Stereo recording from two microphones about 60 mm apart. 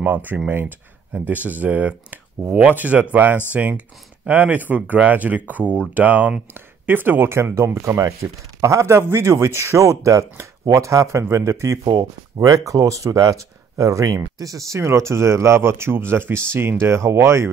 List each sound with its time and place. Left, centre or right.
0.0 s speech: right